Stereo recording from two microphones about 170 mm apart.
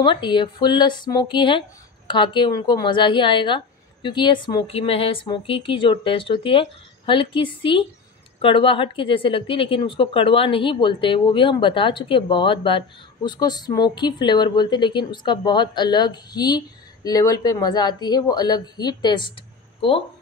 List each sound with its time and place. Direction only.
0.0 s speech: 30° left (ahead or behind)